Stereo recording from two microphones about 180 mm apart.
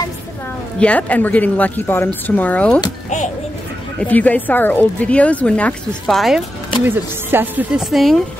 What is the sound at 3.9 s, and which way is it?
Speech, 10° left (ahead or behind).